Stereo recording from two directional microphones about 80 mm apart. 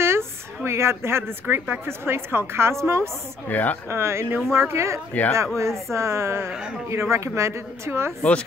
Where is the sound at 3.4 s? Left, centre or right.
Left.